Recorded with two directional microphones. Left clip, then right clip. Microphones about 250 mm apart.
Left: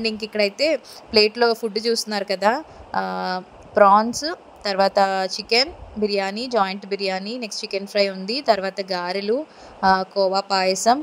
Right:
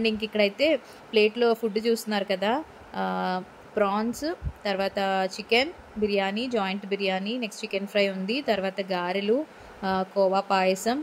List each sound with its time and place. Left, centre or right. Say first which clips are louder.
0.0 s a woman's voice: left 2 dB; centre